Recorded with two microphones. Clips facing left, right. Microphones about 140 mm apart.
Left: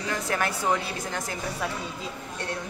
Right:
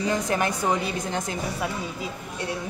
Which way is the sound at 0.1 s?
20° right (ahead or behind).